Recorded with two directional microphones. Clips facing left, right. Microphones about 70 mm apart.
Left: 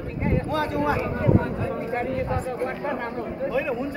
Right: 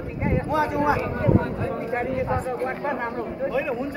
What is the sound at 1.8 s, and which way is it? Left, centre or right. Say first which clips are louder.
Speech: right 2 dB; centre.